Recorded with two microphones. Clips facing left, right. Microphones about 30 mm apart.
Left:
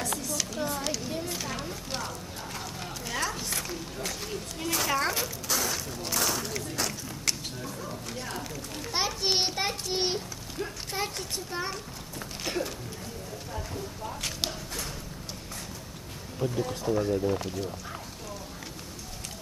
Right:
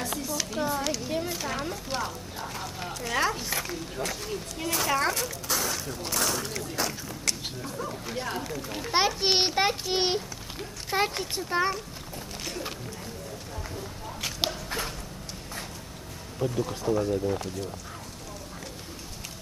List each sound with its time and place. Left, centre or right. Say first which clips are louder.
0.2 s a sound: right 2 dB; centre
3.2 s a sound: right 5 dB; centre
3.4 s speech: right 2 dB; centre
8.9 s a child's voice: right 4 dB; right
12.5 s speech: left 6 dB; left
16.3 s speech: right 1 dB; centre